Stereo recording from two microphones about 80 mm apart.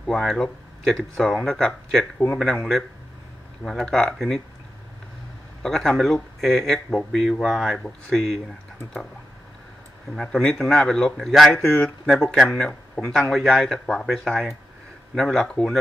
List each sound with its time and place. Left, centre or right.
0.0 s speech: centre
3.6 s speech: centre
5.6 s speech: centre
7.7 s speech: centre
10.1 s speech: centre
11.5 s speech: left
12.1 s speech: centre